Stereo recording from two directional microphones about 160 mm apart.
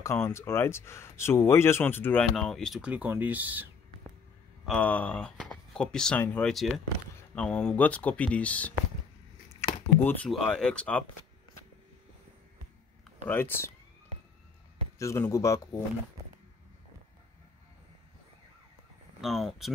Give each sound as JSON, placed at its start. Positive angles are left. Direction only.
{"t": 0.0, "sound": "speech", "side_deg": 15}
{"t": 2.2, "sound": "speech", "side_deg": 0}
{"t": 4.6, "sound": "speech", "side_deg": 10}
{"t": 9.6, "sound": "a sound", "side_deg": 15}
{"t": 9.9, "sound": "speech", "side_deg": 10}
{"t": 13.3, "sound": "speech", "side_deg": 15}
{"t": 15.0, "sound": "speech", "side_deg": 20}
{"t": 19.2, "sound": "speech", "side_deg": 0}